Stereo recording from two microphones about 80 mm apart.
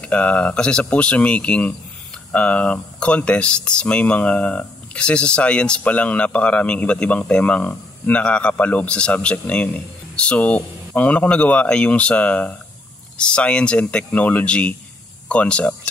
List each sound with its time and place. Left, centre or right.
0.0 s speech: centre